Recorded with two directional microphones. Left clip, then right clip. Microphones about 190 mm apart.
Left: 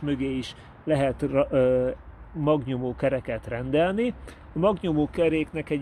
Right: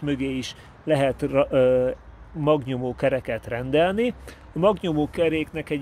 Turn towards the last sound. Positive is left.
turn(degrees=0)  # may be behind; listen again after turning